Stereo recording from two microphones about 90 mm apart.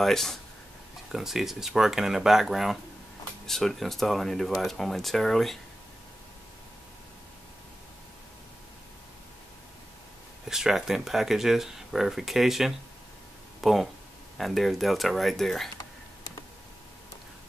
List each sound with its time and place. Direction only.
0.0 s speech: 5° left (ahead or behind)
10.5 s speech: 5° right (ahead or behind)